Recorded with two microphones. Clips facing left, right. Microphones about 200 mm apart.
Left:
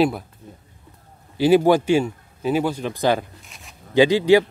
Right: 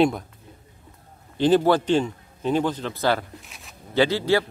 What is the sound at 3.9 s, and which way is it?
Speech, 15° left (ahead or behind).